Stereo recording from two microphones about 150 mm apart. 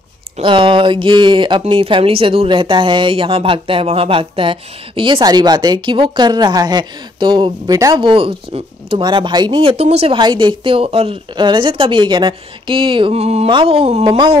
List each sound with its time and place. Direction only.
0.4 s speech: 35° right (ahead or behind)
10.1 s speech: 30° right (ahead or behind)
14.0 s speech: 35° right (ahead or behind)